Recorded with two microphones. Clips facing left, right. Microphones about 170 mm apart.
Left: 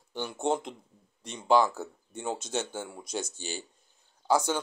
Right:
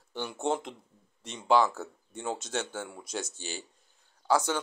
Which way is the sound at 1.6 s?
10° left (ahead or behind).